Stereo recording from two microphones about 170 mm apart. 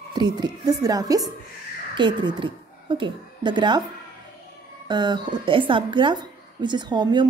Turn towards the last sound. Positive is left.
turn(degrees=-25)  # may be behind; listen again after turning